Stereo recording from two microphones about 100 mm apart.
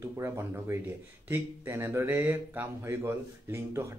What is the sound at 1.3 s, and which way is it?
Speech, 25° right (ahead or behind).